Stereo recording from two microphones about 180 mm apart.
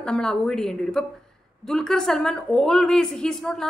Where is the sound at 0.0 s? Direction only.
5° left (ahead or behind).